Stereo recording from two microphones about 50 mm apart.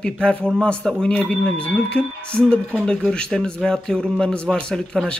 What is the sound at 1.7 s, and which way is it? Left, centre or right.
Speech, centre.